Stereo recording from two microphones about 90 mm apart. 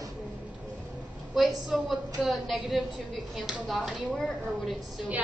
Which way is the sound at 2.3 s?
Centre (ahead or behind).